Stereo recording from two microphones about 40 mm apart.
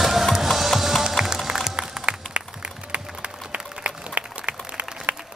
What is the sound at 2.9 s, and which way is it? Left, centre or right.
Applause, right.